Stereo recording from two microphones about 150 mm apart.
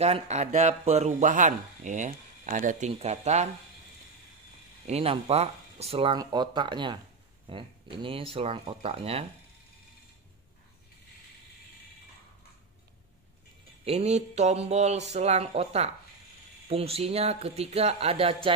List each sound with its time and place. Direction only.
0.0 s speech: 45° right (ahead or behind)
2.9 s speech: 45° right (ahead or behind)
4.8 s speech: 40° right (ahead or behind)
13.8 s speech: 45° right (ahead or behind)